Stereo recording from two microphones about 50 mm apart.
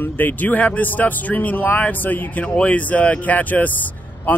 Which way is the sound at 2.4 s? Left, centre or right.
Left.